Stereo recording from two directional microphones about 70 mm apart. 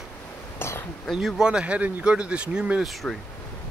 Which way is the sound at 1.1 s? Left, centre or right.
Centre.